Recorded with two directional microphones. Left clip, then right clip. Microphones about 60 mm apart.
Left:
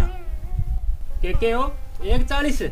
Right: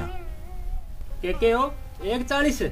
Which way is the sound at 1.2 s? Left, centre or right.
Right.